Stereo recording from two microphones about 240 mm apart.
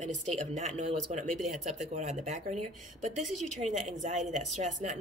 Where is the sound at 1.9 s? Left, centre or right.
Right.